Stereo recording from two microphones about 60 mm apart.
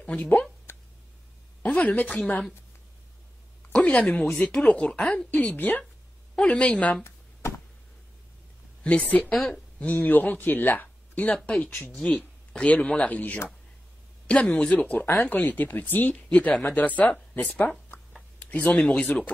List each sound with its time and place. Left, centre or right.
0.0 s speech: left
0.7 s a sound: left
1.6 s a woman's voice: left
3.7 s speech: left
7.0 s a sound: left
8.8 s speech: left
9.3 s speech: centre
9.8 s speech: left